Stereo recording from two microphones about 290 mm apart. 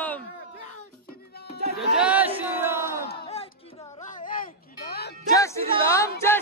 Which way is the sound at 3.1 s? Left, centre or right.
Centre.